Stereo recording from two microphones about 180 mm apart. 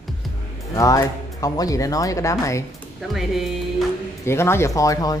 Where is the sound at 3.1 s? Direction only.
Centre (ahead or behind).